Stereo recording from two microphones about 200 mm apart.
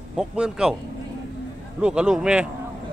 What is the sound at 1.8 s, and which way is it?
Speech, 5° right (ahead or behind).